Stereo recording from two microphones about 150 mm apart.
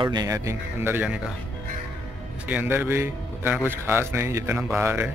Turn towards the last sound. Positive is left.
turn(degrees=-15)  # may be behind; listen again after turning